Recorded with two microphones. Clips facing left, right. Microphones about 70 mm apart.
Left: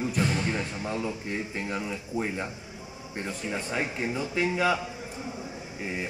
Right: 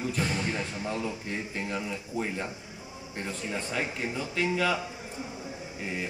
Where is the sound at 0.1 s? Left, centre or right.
Centre.